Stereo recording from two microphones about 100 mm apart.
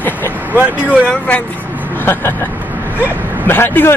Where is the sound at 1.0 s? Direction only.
10° left (ahead or behind).